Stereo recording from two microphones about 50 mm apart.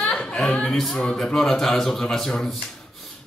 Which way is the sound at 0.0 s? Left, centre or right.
Left.